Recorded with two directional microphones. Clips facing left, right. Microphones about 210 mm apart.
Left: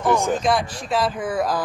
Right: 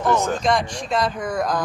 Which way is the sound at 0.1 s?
10° left (ahead or behind).